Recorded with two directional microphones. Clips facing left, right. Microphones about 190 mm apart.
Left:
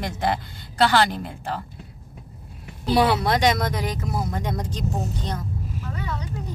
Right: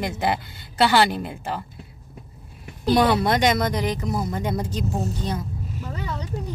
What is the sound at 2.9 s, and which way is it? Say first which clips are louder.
Speech: right 1 dB; 5° left (ahead or behind).